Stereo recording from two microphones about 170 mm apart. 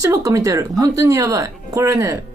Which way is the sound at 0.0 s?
20° right (ahead or behind).